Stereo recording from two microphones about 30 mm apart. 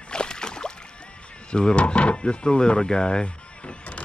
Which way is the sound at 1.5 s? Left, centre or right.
Left.